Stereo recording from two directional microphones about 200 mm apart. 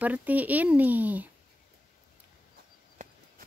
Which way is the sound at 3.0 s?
40° right (ahead or behind).